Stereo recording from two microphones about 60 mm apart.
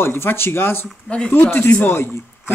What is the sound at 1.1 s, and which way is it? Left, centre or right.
Speech, centre.